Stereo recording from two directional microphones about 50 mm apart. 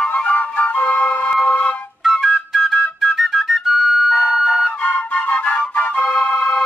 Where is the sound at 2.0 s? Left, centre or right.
Centre.